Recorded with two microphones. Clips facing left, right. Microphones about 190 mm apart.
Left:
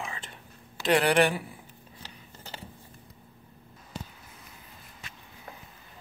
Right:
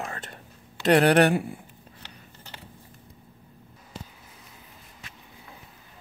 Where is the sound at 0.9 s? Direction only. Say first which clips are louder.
Right 4 dB; 60° right (ahead or behind).